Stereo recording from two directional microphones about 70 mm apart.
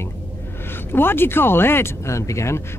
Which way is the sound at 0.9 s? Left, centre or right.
Left.